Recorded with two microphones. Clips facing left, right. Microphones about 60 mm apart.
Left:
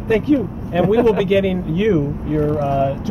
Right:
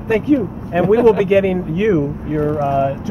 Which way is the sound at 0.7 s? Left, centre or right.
Centre.